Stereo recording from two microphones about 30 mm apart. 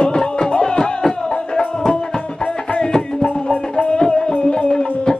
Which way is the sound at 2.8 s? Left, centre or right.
Left.